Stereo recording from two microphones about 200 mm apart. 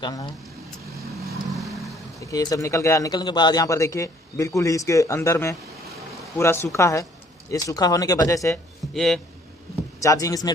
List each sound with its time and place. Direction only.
0.0 s speech: 20° left (ahead or behind)
1.5 s vehicle: centre (ahead or behind)
2.2 s a man's voice: 15° left (ahead or behind)
8.9 s a man's voice: centre (ahead or behind)
10.0 s a man's voice: 15° left (ahead or behind)